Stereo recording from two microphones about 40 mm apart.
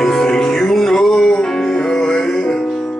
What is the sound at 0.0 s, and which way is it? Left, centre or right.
Music, centre.